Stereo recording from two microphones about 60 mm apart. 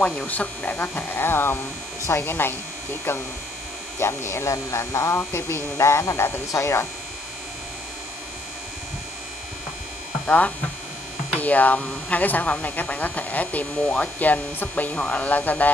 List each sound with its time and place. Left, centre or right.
0.0 s speech: left
10.2 s speech: left